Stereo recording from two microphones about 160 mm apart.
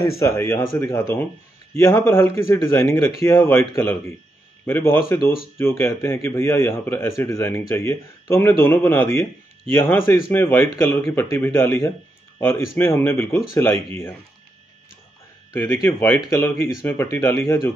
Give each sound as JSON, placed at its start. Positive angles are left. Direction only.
{"t": 0.2, "sound": "a man's voice", "side_deg": 15}
{"t": 15.5, "sound": "a man's voice", "side_deg": 15}